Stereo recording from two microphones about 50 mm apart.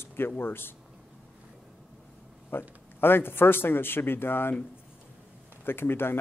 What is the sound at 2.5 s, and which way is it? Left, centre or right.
Speech, left.